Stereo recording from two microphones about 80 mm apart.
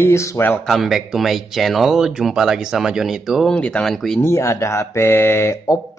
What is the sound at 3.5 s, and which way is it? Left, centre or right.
Speech, centre.